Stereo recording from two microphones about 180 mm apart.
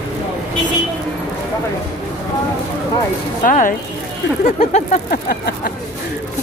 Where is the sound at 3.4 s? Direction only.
50° left (ahead or behind).